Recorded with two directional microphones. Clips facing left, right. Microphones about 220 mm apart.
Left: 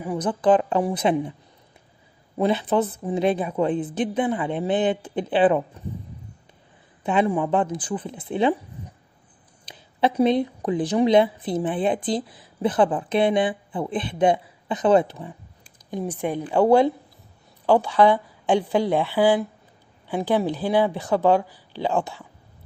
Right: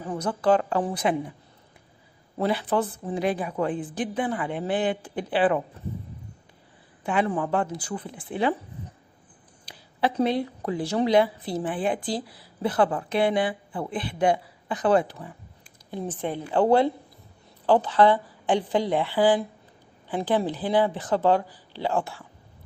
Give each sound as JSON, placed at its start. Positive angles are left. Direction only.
{"t": 0.0, "sound": "a woman's voice", "side_deg": 15}
{"t": 2.3, "sound": "a woman's voice", "side_deg": 20}
{"t": 7.0, "sound": "a woman's voice", "side_deg": 20}
{"t": 9.7, "sound": "a sound", "side_deg": 20}
{"t": 10.1, "sound": "a woman's voice", "side_deg": 20}
{"t": 15.9, "sound": "speech", "side_deg": 15}